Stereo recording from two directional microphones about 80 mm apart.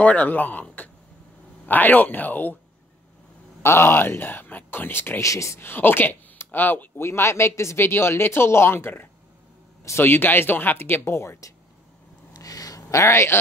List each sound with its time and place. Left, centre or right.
0.0 s speech: centre
3.6 s speech: left
5.2 s speech: left
12.4 s a sound: left